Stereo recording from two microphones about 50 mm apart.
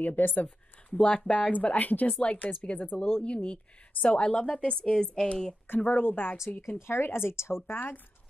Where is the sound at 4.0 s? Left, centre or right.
Left.